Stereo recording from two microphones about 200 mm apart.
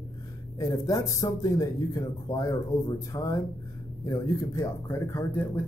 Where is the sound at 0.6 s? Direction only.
15° left (ahead or behind).